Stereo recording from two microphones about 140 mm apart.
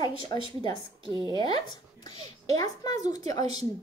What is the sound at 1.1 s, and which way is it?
Speech, 35° right (ahead or behind).